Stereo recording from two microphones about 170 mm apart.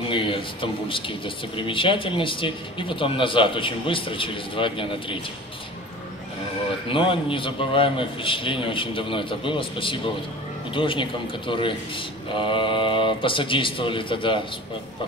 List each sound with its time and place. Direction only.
0.1 s speech: 30° left (ahead or behind)
6.9 s speech: 30° left (ahead or behind)